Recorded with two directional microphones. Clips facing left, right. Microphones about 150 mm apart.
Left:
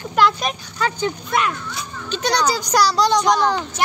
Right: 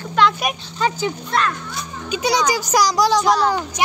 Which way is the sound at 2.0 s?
10° right (ahead or behind).